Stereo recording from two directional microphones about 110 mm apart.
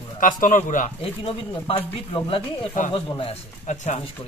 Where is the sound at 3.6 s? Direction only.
90° left.